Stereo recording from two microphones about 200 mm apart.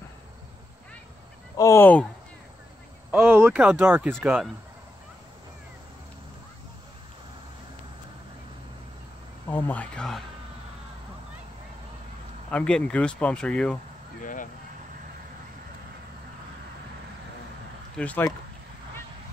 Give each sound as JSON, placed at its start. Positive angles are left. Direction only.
{"t": 1.6, "sound": "speech", "side_deg": 10}
{"t": 3.1, "sound": "speech", "side_deg": -10}
{"t": 9.5, "sound": "speech", "side_deg": 10}
{"t": 12.4, "sound": "speech", "side_deg": 5}
{"t": 14.2, "sound": "vehicle", "side_deg": 40}
{"t": 17.9, "sound": "speech", "side_deg": 10}